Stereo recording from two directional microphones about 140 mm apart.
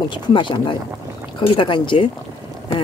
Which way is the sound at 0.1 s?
35° left (ahead or behind).